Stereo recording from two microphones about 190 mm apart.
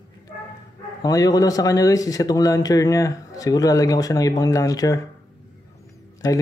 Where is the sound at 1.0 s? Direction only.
20° left (ahead or behind).